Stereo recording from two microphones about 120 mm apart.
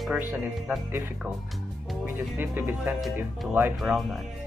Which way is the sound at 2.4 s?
15° right (ahead or behind).